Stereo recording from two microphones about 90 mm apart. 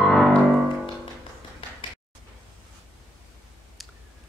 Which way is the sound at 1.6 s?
80° left.